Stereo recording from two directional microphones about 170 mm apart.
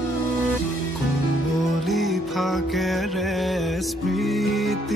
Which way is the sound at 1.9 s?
Centre (ahead or behind).